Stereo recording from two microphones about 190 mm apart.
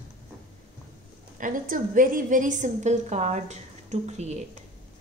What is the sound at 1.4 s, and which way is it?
A woman's voice, 45° right (ahead or behind).